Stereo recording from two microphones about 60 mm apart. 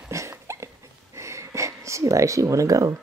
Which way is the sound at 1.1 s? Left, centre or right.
Right.